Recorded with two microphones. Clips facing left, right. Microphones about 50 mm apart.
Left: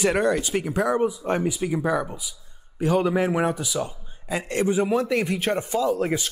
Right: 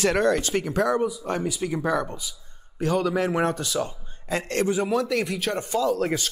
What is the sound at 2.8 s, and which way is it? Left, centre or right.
Speech, left.